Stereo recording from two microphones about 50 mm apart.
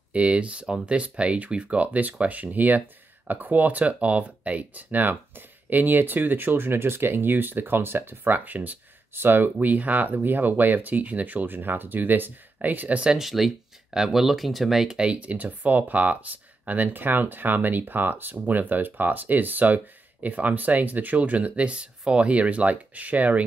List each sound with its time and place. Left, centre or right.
0.1 s speech: right
8.2 s speech: right
9.1 s speech: right
13.2 s speech: centre
15.0 s speech: right